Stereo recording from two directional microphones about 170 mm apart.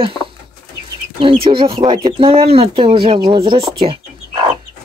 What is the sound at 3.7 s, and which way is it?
Chicken, 30° right (ahead or behind).